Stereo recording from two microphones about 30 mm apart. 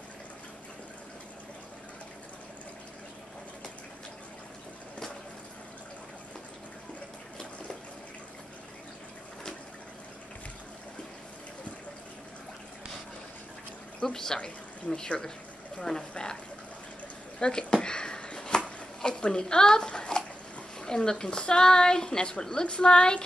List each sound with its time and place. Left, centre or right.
14.0 s speech: centre
15.8 s a woman's voice: left
17.4 s speech: left
17.8 s a sound: left
19.2 s a child's voice: left